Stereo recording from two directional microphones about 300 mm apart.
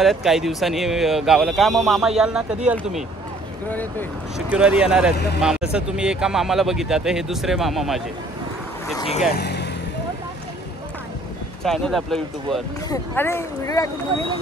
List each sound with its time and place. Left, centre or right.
0.0 s speech: centre
4.5 s speech: centre
5.1 s speech: left
5.4 s speech: centre
8.9 s speech: centre
9.3 s vehicle: left
11.6 s speech: centre